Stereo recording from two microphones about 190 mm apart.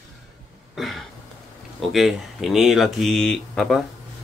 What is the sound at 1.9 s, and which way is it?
Speech, centre (ahead or behind).